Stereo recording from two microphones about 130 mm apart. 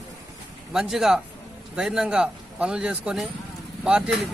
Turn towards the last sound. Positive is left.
turn(degrees=-5)  # may be behind; listen again after turning